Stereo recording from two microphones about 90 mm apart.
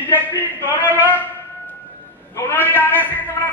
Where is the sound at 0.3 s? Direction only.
25° left (ahead or behind).